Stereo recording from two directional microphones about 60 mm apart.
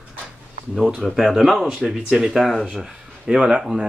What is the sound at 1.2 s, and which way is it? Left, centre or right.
Speech, centre.